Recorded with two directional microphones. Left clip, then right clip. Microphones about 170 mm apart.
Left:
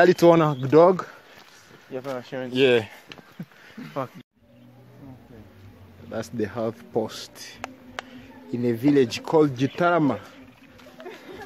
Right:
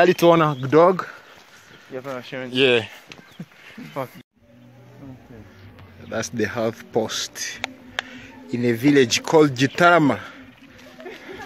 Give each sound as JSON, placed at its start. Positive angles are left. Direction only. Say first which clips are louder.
{"t": 0.0, "sound": "speech", "louder": "right 1 dB", "side_deg": 25}
{"t": 1.9, "sound": "speech", "louder": "right 1 dB", "side_deg": 45}
{"t": 2.5, "sound": "speech", "louder": "right 2 dB", "side_deg": 20}
{"t": 3.8, "sound": "speech", "louder": "right 1 dB", "side_deg": 55}
{"t": 6.0, "sound": "speech", "louder": "right 5 dB", "side_deg": 0}